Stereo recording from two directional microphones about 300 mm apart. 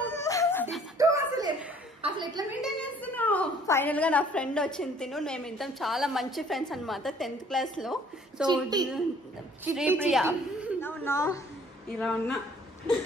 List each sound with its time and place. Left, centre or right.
0.1 s music: centre
0.9 s chuckle: centre
2.0 s a sound: centre
2.6 s a woman's voice: centre
8.5 s a woman's voice: centre
10.8 s a sound: centre
12.0 s a woman's voice: centre